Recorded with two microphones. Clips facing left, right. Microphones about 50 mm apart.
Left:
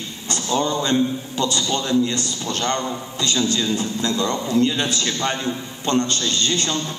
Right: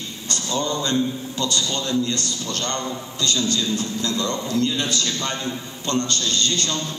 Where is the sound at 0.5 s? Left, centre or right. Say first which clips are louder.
Left 3 dB; centre.